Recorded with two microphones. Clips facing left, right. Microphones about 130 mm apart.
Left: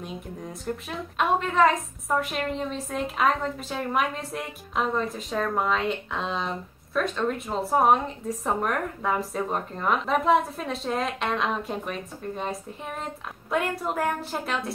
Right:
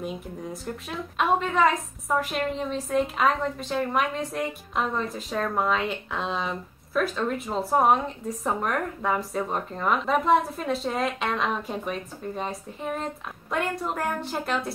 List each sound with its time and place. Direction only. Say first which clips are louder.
0.0 s a woman's voice: right 3 dB; centre (ahead or behind)